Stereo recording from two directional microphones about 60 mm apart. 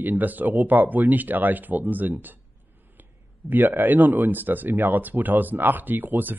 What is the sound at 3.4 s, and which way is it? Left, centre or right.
Speech, right.